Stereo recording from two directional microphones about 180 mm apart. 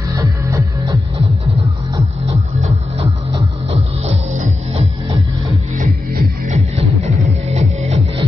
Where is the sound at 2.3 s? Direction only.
35° right (ahead or behind).